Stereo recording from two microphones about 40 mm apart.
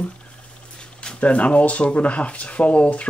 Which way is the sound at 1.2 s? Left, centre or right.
Left.